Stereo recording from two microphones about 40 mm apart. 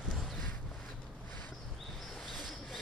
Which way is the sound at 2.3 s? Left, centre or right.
Centre.